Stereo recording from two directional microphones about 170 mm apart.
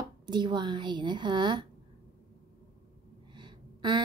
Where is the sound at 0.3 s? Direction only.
25° right (ahead or behind).